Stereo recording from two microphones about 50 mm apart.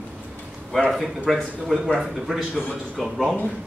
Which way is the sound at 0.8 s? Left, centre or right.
Centre.